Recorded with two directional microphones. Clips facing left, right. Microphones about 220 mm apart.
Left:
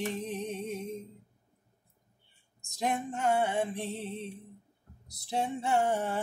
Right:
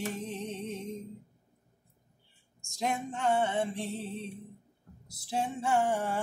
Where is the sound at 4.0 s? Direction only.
20° left (ahead or behind).